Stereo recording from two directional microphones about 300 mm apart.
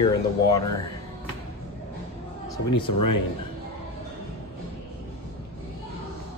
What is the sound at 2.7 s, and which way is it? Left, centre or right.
Speech, left.